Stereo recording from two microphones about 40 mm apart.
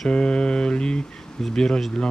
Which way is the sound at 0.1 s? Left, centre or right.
Left.